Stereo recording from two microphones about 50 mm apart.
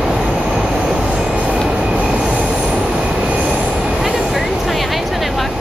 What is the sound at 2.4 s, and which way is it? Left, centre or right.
Train wheels squealing, centre.